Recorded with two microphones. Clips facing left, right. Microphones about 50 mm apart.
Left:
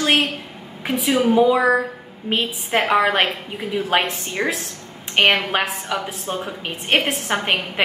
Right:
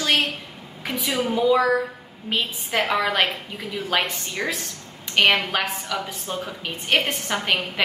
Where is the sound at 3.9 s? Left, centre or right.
Left.